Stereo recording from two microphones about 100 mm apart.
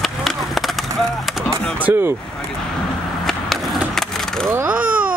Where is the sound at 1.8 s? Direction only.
20° right (ahead or behind).